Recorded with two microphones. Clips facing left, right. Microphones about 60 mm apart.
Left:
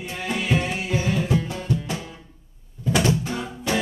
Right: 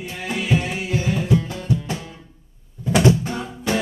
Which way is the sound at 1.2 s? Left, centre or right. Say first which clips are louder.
Right 3 dB; centre.